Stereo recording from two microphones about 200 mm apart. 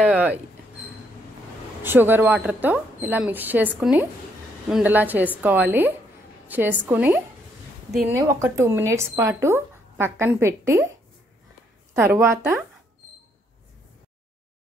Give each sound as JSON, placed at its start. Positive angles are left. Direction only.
{"t": 0.0, "sound": "speech", "side_deg": -5}
{"t": 1.8, "sound": "speech", "side_deg": -10}
{"t": 11.9, "sound": "speech", "side_deg": -15}